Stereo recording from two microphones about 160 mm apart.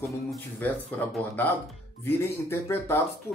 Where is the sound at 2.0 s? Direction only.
15° left (ahead or behind).